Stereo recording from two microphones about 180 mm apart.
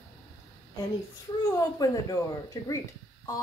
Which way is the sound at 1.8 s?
20° left (ahead or behind).